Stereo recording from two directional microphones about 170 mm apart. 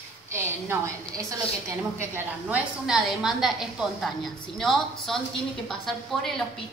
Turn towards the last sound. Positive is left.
turn(degrees=0)  # may be behind; listen again after turning